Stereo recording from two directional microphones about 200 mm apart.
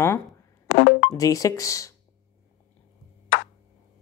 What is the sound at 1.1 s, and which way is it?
Speech, 15° left (ahead or behind).